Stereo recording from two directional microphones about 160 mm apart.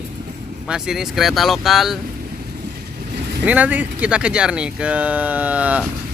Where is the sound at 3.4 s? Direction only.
10° right (ahead or behind).